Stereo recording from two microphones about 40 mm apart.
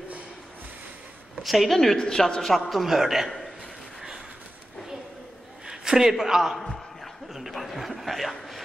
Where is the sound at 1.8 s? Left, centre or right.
Centre.